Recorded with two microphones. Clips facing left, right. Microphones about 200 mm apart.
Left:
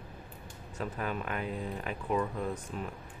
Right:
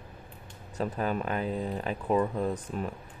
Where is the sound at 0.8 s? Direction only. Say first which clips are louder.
Right 5 dB; 35° right (ahead or behind).